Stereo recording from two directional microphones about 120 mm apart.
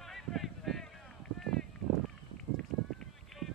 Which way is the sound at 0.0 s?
Centre (ahead or behind).